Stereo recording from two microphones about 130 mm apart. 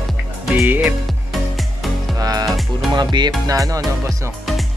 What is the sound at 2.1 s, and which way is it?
Music, 30° right (ahead or behind).